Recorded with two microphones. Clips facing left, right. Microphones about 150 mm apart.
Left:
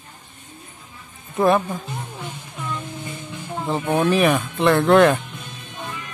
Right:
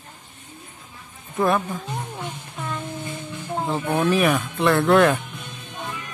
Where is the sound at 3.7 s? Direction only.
10° left (ahead or behind).